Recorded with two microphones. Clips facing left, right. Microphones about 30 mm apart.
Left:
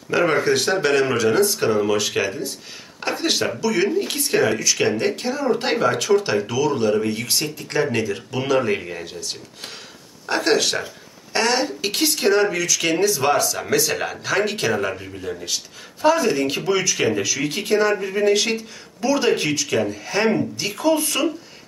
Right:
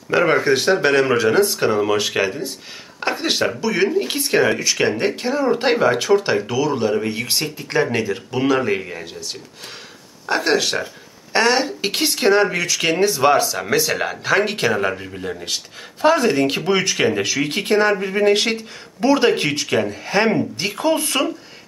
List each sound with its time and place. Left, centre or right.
0.1 s speech: centre
11.3 s speech: right